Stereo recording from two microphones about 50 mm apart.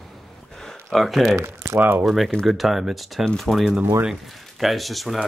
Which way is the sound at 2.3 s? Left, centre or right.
Centre.